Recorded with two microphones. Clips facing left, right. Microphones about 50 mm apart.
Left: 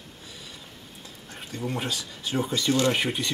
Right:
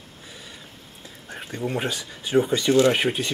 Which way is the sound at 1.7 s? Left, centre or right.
Centre.